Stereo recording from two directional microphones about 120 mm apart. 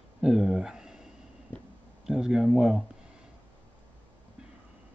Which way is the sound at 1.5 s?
15° left (ahead or behind).